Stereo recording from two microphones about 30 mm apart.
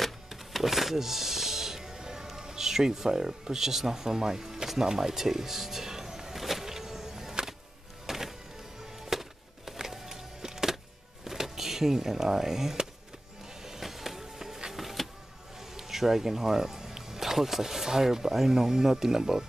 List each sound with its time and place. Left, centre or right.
0.3 s music: centre
2.3 s speech: centre
5.1 s music: centre
6.3 s vehicle: centre
6.6 s a sound: centre
8.1 s music: centre
11.2 s speech: centre
13.6 s music: centre
14.7 s power windows: centre
15.7 s speech: centre